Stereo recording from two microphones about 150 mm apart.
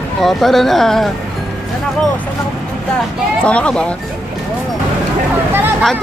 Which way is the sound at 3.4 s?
5° left (ahead or behind).